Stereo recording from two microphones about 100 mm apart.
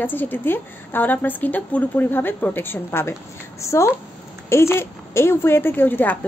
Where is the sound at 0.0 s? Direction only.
20° left (ahead or behind).